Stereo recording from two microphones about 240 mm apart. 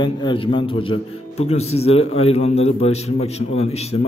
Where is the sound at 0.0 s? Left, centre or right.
Centre.